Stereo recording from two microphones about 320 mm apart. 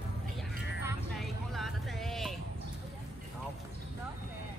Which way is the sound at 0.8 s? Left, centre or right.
Centre.